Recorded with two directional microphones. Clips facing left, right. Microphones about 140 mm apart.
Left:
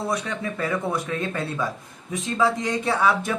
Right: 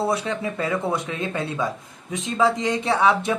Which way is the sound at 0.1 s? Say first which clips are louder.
Right 3 dB; 25° right (ahead or behind).